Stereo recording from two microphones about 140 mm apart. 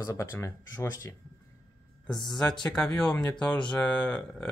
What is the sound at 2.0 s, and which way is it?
Speech, centre (ahead or behind).